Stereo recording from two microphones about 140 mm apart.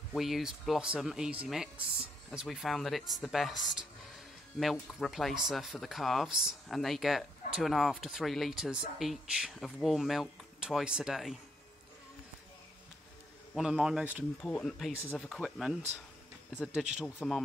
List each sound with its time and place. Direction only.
0.1 s speech: centre (ahead or behind)
13.6 s speech: 5° right (ahead or behind)
14.4 s speech: 5° left (ahead or behind)
17.0 s speech: centre (ahead or behind)